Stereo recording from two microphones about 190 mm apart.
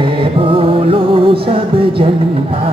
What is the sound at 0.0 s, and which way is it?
Music, 30° right (ahead or behind).